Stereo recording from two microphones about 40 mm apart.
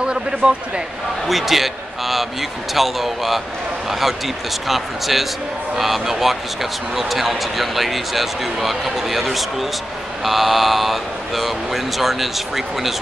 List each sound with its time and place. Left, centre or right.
0.0 s speech: right
1.2 s speech: centre
4.6 s speech: centre